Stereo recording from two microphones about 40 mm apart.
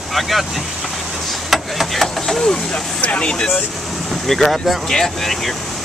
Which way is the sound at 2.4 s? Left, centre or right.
Left.